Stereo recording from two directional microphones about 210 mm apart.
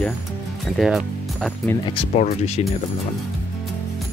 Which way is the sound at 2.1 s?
30° left (ahead or behind).